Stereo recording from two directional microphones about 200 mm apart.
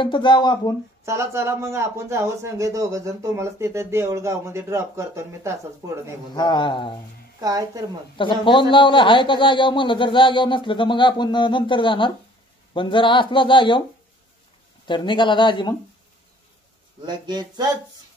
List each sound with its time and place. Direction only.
0.0 s a man's voice: 25° left (ahead or behind)
1.0 s a man's voice: 15° right (ahead or behind)
6.3 s a man's voice: 20° left (ahead or behind)
7.3 s a woman's voice: 15° right (ahead or behind)
8.2 s a man's voice: 25° left (ahead or behind)
14.9 s a man's voice: 25° left (ahead or behind)
17.0 s speech: 20° right (ahead or behind)